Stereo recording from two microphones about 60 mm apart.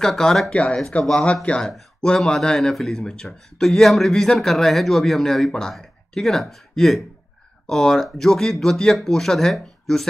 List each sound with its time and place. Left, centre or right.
0.0 s speech: centre
0.5 s speech: left; by 10.0 s centre